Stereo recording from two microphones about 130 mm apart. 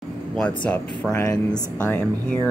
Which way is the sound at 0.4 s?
5° left (ahead or behind).